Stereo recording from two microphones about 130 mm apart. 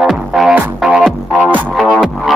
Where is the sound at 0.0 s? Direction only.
5° right (ahead or behind).